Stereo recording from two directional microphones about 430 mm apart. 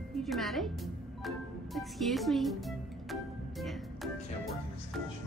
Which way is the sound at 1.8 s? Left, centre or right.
Centre.